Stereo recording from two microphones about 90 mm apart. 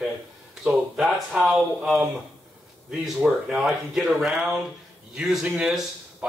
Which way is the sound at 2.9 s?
10° right (ahead or behind).